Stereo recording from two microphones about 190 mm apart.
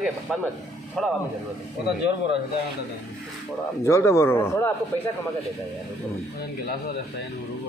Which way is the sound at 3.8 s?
15° left (ahead or behind).